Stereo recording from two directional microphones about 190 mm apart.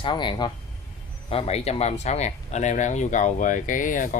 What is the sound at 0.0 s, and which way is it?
Speech, 25° left (ahead or behind).